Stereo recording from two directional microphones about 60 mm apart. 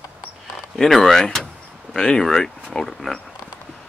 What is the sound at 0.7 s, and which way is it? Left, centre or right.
Speech, centre.